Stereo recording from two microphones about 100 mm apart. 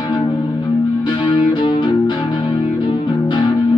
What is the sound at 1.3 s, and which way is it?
Music, 55° left (ahead or behind).